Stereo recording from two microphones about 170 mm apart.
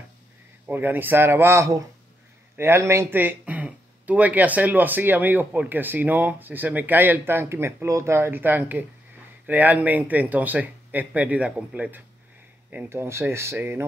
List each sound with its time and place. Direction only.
0.7 s speech: 10° right (ahead or behind)